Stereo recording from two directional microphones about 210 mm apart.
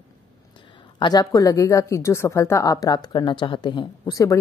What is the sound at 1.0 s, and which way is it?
A woman's voice, 20° left (ahead or behind).